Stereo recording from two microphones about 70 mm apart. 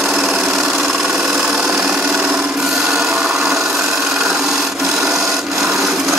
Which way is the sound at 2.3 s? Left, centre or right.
Centre.